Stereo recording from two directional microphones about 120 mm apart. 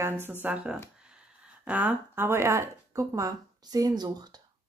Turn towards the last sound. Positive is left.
turn(degrees=-35)  # may be behind; listen again after turning